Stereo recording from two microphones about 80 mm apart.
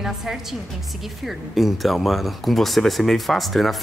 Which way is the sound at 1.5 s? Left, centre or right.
Centre.